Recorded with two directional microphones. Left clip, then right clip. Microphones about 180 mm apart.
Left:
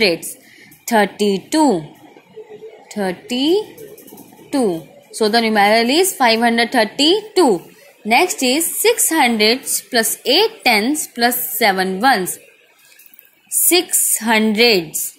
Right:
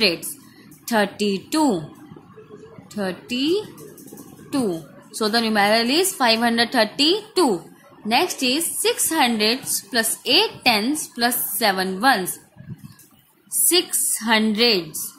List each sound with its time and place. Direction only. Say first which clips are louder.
0.0 s a woman's voice: left 4 dB; 10° left (ahead or behind)
2.9 s a woman's voice: left 5 dB; 15° left (ahead or behind)
13.7 s a woman's voice: left 4 dB; 20° left (ahead or behind)